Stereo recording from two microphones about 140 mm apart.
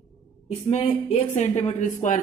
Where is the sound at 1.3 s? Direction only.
60° left (ahead or behind).